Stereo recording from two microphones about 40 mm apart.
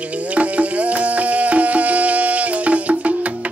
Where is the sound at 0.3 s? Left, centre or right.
Right.